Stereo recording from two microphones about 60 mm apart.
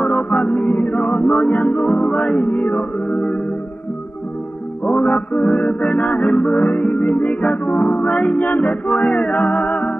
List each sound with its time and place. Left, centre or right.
0.0 s music: centre
0.6 s music: left
4.8 s music: left